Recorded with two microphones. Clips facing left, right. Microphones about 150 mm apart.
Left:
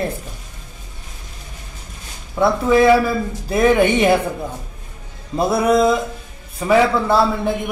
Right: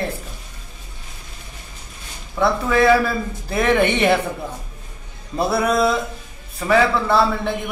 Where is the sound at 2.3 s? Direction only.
15° left (ahead or behind).